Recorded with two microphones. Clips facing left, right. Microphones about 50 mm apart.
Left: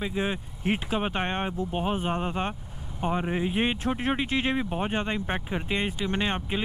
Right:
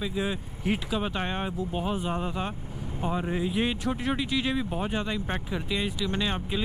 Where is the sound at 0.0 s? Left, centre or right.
Left.